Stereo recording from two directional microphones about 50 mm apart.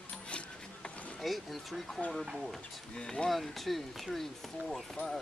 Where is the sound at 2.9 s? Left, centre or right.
Centre.